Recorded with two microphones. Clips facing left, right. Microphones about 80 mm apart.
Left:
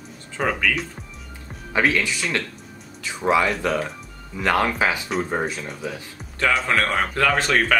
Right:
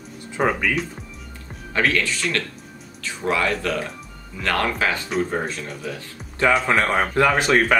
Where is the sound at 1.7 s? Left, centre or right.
Centre.